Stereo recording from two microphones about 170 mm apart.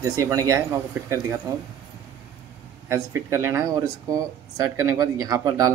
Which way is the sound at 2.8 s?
15° right (ahead or behind).